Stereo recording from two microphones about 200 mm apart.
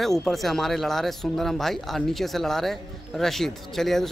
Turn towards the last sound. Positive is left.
turn(degrees=0)  # may be behind; listen again after turning